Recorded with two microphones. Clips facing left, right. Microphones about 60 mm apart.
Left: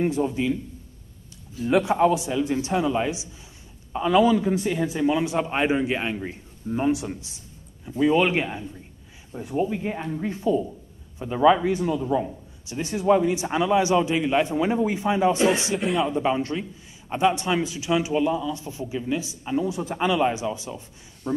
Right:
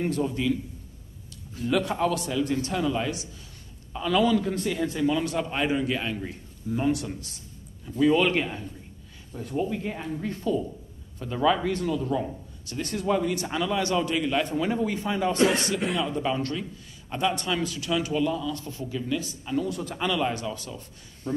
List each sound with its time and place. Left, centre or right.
0.0 s a man's voice: centre
1.7 s a man's voice: left
9.9 s a man's voice: centre
15.8 s speech: centre
16.1 s speech: left